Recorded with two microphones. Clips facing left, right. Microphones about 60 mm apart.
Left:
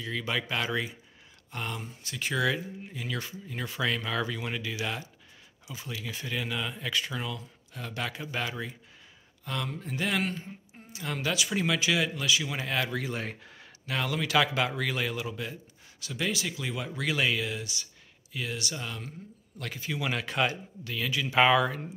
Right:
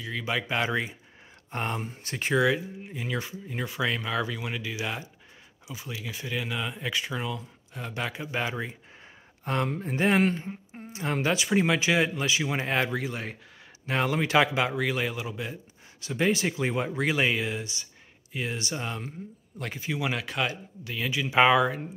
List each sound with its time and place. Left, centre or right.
0.0 s speech: centre
1.5 s speech: right
2.3 s speech: centre
9.4 s speech: right
12.9 s speech: centre
13.8 s speech: right
16.0 s speech: right
20.2 s a man's voice: centre
20.8 s speech: centre